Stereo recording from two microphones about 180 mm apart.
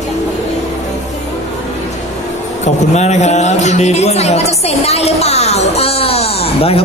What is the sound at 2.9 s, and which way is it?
Speech, 40° left (ahead or behind).